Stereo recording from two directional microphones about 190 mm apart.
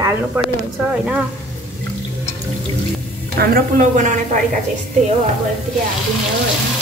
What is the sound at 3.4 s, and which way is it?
A woman's voice, 50° right (ahead or behind).